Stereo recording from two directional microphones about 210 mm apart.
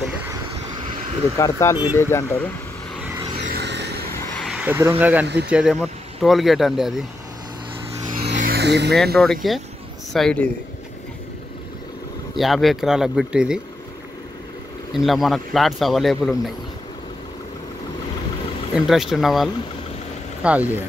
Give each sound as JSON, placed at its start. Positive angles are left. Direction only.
{"t": 1.4, "sound": "speech", "side_deg": 15}
{"t": 3.4, "sound": "vehicle", "side_deg": -50}
{"t": 4.5, "sound": "speech", "side_deg": -5}
{"t": 5.2, "sound": "speech", "side_deg": -55}
{"t": 5.5, "sound": "speech", "side_deg": -5}
{"t": 8.2, "sound": "music", "side_deg": -35}
{"t": 8.5, "sound": "music", "side_deg": -50}
{"t": 9.1, "sound": "speech", "side_deg": 0}
{"t": 12.4, "sound": "speech", "side_deg": 0}
{"t": 15.0, "sound": "speech", "side_deg": 0}
{"t": 18.9, "sound": "speech", "side_deg": 0}